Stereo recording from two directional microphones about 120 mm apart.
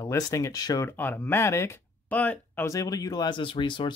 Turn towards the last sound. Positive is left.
turn(degrees=40)  # may be behind; listen again after turning